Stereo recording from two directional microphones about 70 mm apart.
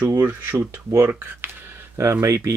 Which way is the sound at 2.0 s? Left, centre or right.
Right.